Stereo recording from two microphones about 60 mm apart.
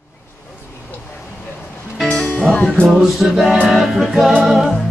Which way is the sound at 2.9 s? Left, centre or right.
Centre.